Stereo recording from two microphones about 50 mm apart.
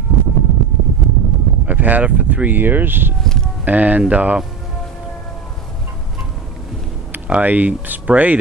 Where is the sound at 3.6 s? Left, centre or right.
Right.